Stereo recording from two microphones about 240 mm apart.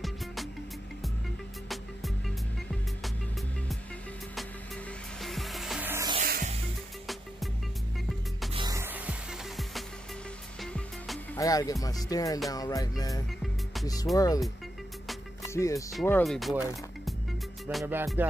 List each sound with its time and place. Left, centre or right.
1.7 s music: centre
5.2 s music: centre
6.2 s music: right
8.5 s music: centre
11.3 s speech: centre
15.4 s music: centre
15.9 s speech: centre
17.6 s music: centre